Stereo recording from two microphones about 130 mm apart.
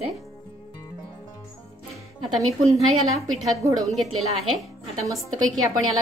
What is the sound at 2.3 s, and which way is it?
Speech, centre (ahead or behind).